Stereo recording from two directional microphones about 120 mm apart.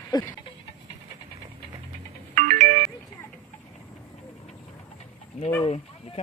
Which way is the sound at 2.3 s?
90° right.